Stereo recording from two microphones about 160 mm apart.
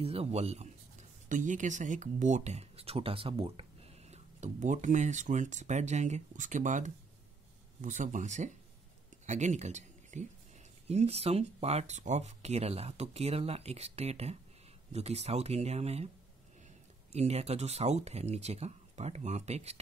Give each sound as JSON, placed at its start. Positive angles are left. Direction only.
{"t": 0.0, "sound": "speech", "side_deg": -40}
{"t": 17.1, "sound": "speech", "side_deg": -40}